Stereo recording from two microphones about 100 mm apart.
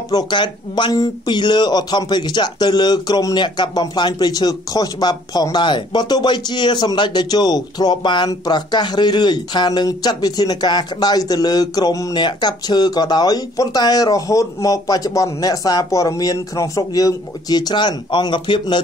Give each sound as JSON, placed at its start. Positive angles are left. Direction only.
{"t": 0.1, "sound": "speech", "side_deg": 45}